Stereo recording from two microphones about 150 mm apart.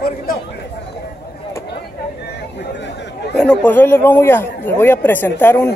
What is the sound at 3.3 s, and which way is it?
Speech, 5° left (ahead or behind).